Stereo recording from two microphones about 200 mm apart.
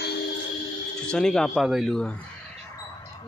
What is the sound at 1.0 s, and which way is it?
Speech, 5° left (ahead or behind).